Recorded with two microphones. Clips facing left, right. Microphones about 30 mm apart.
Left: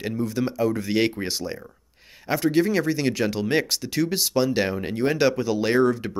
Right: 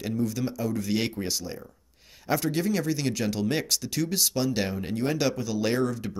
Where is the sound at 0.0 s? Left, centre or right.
Left.